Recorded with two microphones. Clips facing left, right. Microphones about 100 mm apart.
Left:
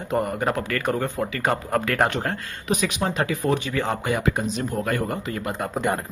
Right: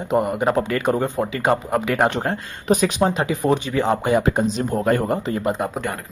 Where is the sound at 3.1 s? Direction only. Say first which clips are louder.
Right 3 dB; 20° right (ahead or behind).